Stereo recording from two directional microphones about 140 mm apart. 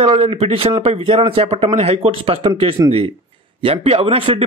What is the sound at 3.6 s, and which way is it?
Speech, 45° right (ahead or behind).